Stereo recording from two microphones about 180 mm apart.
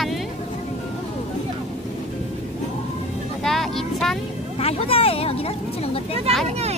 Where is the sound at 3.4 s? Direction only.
Centre (ahead or behind).